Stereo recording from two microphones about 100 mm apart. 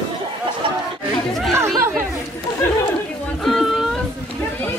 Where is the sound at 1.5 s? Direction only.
25° right (ahead or behind).